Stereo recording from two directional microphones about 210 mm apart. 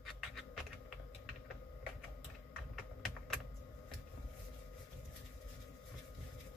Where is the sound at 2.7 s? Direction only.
Centre (ahead or behind).